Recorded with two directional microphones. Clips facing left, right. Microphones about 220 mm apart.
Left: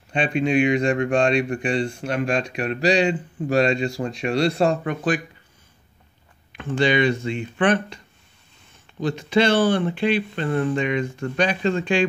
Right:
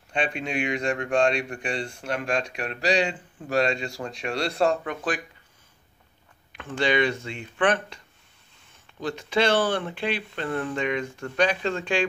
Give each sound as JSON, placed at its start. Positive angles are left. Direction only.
{"t": 0.1, "sound": "speech", "side_deg": 20}
{"t": 6.7, "sound": "speech", "side_deg": 20}
{"t": 7.2, "sound": "speech", "side_deg": 10}
{"t": 9.0, "sound": "speech", "side_deg": 20}